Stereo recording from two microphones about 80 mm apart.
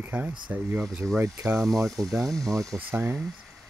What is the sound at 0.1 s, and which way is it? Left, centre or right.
Speech, centre.